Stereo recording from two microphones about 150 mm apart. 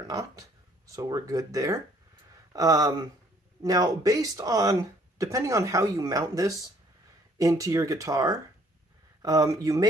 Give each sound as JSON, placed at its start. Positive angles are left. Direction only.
{"t": 0.0, "sound": "speech", "side_deg": -25}